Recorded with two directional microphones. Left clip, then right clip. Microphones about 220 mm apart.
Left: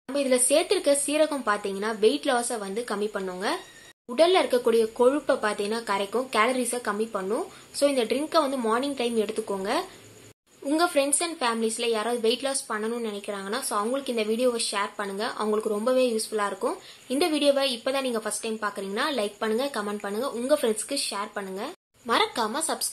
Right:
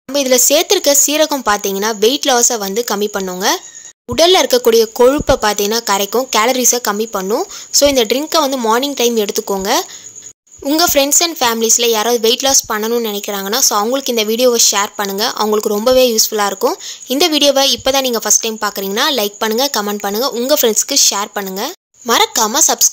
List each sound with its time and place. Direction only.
0.1 s a woman's voice: 50° right (ahead or behind)